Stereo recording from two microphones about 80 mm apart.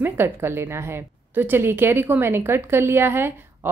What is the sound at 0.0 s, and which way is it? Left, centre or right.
A woman's voice, right.